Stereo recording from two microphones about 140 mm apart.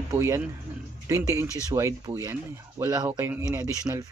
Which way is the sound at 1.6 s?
25° right (ahead or behind).